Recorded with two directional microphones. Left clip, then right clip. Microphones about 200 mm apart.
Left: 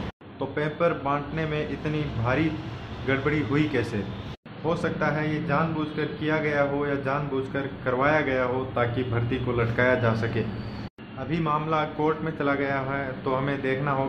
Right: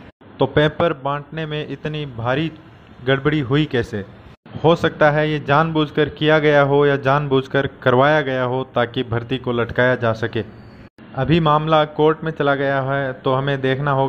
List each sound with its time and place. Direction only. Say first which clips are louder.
0.4 s a man's voice: right 9 dB; 45° right (ahead or behind)